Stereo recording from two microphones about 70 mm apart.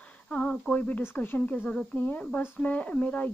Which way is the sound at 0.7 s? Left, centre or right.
Left.